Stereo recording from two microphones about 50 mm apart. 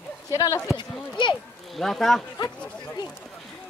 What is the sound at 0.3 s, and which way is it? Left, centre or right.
Speech, left.